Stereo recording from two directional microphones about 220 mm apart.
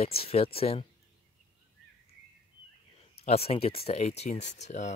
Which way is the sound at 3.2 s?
25° left (ahead or behind).